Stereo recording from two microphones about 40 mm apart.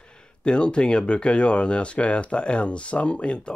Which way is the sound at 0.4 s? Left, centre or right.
Left.